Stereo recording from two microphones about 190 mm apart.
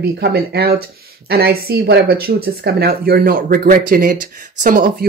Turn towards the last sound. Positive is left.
turn(degrees=-45)  # may be behind; listen again after turning